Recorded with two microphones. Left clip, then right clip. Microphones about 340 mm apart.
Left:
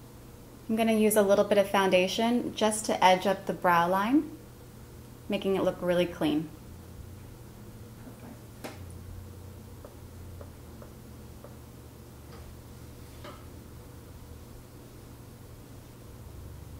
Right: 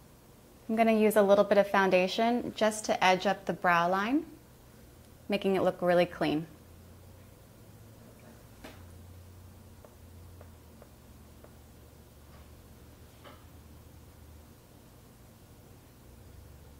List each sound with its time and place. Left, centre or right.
0.7 s a woman's voice: right
5.3 s a woman's voice: right